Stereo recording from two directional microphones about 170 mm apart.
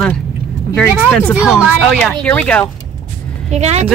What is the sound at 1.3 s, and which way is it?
Speech, 5° right (ahead or behind).